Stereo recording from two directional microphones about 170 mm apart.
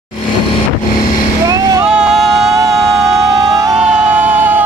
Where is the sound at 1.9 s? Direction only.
5° right (ahead or behind).